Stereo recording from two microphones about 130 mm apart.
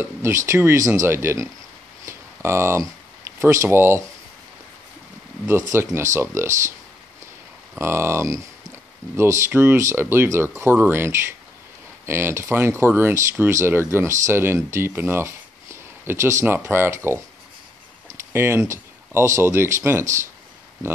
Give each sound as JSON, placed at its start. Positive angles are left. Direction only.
{"t": 0.0, "sound": "a sound", "side_deg": -20}
{"t": 0.5, "sound": "speech", "side_deg": -20}
{"t": 2.0, "sound": "a sound", "side_deg": -20}
{"t": 3.3, "sound": "speech", "side_deg": -20}
{"t": 5.7, "sound": "speech", "side_deg": -20}
{"t": 7.8, "sound": "speech", "side_deg": -20}